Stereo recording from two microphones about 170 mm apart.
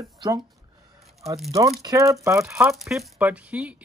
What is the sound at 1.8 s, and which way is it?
Speech, 20° right (ahead or behind).